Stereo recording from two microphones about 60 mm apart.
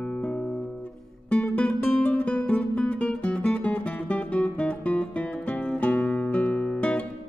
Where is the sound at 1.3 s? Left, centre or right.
Left.